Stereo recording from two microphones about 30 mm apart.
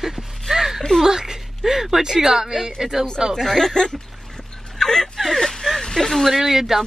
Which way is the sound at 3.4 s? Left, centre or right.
Centre.